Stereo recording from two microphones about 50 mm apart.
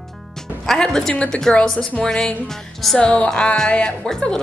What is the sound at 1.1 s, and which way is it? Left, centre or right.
Speech, left.